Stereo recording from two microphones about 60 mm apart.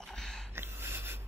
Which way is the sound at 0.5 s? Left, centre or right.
Right.